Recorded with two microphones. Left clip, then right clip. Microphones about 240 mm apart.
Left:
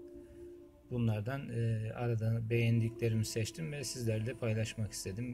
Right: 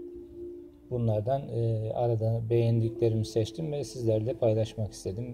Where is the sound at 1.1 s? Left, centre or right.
Right.